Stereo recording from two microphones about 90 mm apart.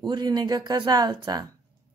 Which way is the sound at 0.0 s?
55° right (ahead or behind).